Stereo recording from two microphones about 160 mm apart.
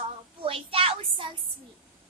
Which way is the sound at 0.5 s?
35° right (ahead or behind).